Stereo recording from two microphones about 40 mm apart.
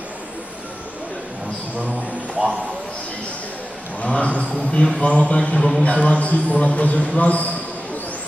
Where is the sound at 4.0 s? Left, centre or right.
Left.